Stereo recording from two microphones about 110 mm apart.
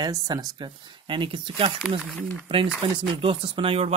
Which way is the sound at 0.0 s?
35° right (ahead or behind).